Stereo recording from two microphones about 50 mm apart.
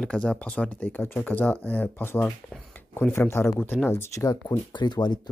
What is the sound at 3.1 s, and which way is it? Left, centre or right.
Speech, left.